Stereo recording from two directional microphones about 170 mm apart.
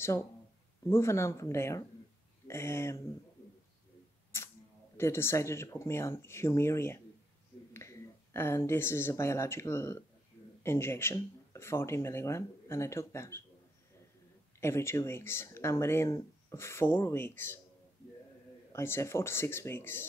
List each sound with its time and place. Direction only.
0.8 s speech: 15° left (ahead or behind)
4.9 s speech: 15° left (ahead or behind)
14.6 s speech: 15° left (ahead or behind)
18.7 s speech: 15° left (ahead or behind)